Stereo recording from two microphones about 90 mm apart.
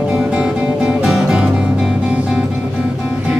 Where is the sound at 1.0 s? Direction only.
5° right (ahead or behind).